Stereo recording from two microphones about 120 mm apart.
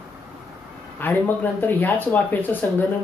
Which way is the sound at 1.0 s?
15° left (ahead or behind).